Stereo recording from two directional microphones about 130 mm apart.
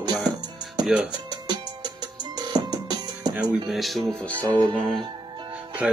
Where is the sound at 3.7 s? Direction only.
Centre (ahead or behind).